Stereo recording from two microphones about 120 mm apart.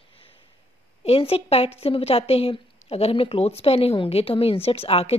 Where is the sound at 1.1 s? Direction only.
55° left (ahead or behind).